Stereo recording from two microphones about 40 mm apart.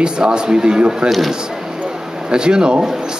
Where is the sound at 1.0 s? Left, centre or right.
Centre.